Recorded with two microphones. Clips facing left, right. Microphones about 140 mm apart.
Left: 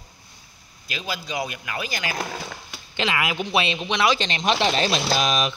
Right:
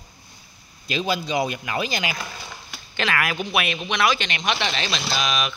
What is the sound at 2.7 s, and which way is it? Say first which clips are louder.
Speech: even; 20° left (ahead or behind).